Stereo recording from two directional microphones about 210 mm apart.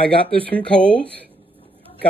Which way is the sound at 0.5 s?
5° left (ahead or behind).